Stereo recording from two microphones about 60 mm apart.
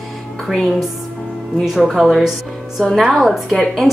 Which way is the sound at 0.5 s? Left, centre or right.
Centre.